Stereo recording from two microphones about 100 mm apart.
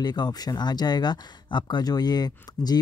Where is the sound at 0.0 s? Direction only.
45° left (ahead or behind).